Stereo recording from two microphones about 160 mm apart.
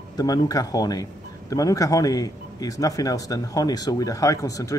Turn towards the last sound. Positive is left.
turn(degrees=20)  # may be behind; listen again after turning